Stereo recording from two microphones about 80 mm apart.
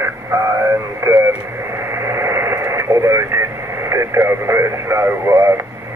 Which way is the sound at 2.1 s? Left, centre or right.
Right.